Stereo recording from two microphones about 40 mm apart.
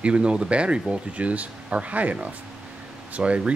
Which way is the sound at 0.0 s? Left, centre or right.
Right.